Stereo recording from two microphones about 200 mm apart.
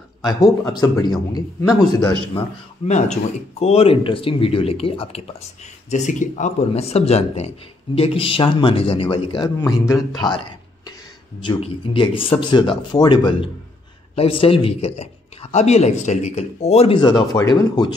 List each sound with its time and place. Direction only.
0.2 s a man's voice: 20° left (ahead or behind)
2.9 s a man's voice: 35° left (ahead or behind); by 10.3 s 15° left (ahead or behind)
11.4 s a man's voice: 25° left (ahead or behind)